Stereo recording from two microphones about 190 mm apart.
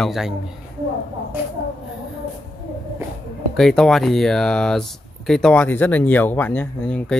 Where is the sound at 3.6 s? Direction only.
Centre (ahead or behind).